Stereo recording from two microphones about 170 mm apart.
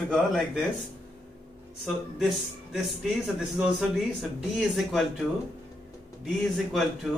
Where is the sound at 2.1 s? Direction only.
Centre (ahead or behind).